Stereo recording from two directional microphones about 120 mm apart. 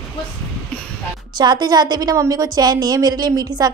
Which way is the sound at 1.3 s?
40° right (ahead or behind).